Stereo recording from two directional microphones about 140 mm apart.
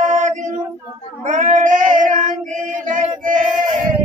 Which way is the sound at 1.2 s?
60° right (ahead or behind).